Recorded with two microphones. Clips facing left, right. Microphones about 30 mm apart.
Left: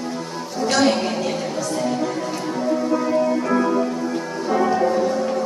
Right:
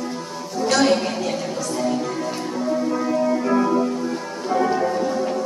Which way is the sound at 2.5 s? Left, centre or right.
Centre.